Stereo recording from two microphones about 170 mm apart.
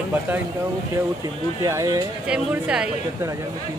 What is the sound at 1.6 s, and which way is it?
Speech, 20° right (ahead or behind).